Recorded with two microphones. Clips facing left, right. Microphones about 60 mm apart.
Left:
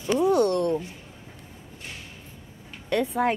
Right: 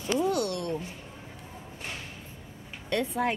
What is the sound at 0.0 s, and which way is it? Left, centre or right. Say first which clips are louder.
Speech: left 6 dB; left.